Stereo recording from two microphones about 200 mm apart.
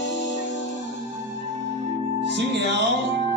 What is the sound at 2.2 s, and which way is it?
Music, 60° right (ahead or behind).